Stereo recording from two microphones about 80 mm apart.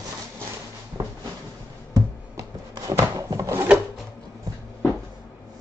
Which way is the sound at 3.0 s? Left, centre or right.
Right.